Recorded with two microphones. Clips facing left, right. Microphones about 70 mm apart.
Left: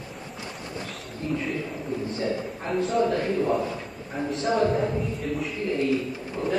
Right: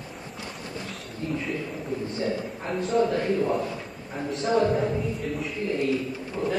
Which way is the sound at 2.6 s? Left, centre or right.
Centre.